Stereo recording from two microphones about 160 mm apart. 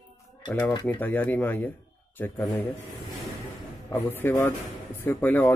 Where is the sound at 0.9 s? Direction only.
10° left (ahead or behind).